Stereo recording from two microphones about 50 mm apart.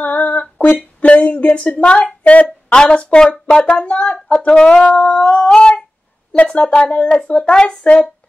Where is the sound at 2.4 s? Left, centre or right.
Centre.